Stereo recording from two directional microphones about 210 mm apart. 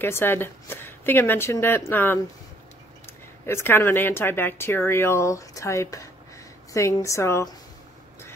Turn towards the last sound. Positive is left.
turn(degrees=15)  # may be behind; listen again after turning